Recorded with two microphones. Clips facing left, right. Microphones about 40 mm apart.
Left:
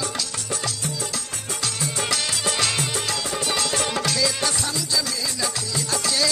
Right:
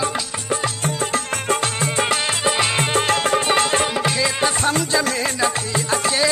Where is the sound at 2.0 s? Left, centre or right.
Right.